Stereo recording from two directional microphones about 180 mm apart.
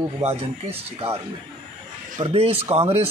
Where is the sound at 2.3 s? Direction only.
35° right (ahead or behind).